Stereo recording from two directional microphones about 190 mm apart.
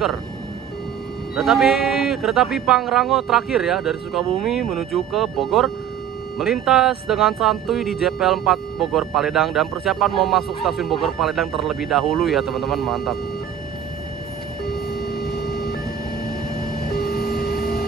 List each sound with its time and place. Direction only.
1.3 s speech: centre (ahead or behind)
14.9 s a sound: 55° left (ahead or behind)
17.0 s printer: 50° left (ahead or behind)